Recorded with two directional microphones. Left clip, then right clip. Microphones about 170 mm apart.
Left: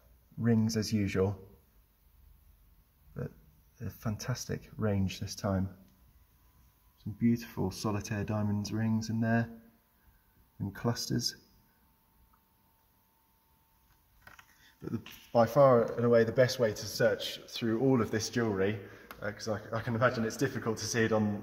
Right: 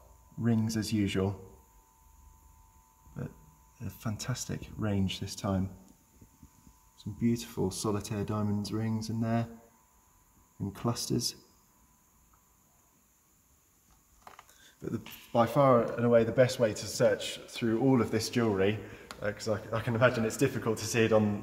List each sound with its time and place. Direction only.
0.4 s speech: 45° left (ahead or behind)
3.8 s speech: 40° left (ahead or behind)
7.3 s speech: 40° left (ahead or behind)
10.7 s speech: 40° left (ahead or behind)
15.3 s speech: 50° left (ahead or behind); by 18.2 s 30° left (ahead or behind)
18.3 s speech: centre (ahead or behind)